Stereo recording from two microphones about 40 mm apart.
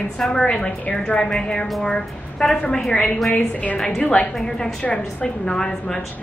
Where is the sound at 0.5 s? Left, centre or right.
Left.